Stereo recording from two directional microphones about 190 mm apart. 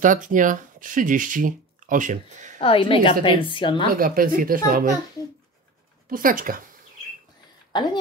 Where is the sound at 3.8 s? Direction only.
50° right (ahead or behind).